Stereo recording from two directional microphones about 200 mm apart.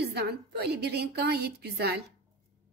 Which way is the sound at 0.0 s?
55° right (ahead or behind).